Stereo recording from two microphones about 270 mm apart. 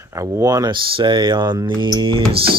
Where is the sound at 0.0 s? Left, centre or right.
Centre.